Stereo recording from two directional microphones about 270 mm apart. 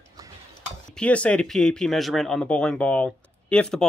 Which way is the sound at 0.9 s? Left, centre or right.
Centre.